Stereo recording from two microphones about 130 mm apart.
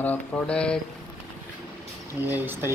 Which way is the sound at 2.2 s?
15° right (ahead or behind).